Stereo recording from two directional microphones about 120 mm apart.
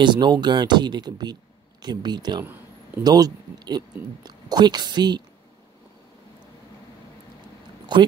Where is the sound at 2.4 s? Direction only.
15° right (ahead or behind).